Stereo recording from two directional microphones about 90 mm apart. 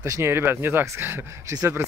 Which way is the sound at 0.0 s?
30° right (ahead or behind).